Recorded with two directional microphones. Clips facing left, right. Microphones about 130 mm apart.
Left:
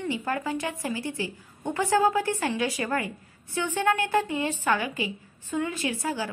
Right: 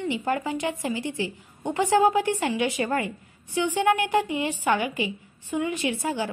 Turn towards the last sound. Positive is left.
turn(degrees=-20)  # may be behind; listen again after turning